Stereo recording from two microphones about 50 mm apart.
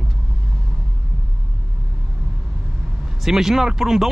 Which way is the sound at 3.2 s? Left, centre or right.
Centre.